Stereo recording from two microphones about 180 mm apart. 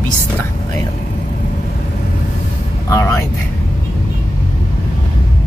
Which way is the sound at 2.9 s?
15° left (ahead or behind).